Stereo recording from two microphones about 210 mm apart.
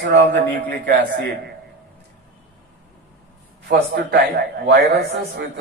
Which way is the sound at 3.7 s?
45° right (ahead or behind).